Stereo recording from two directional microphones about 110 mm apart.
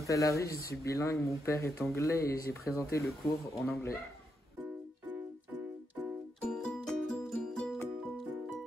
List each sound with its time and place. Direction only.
0.0 s speech: 30° left (ahead or behind)
3.5 s speech: centre (ahead or behind)
6.4 s music: 5° left (ahead or behind)